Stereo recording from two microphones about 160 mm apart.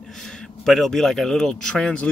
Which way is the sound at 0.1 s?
Centre (ahead or behind).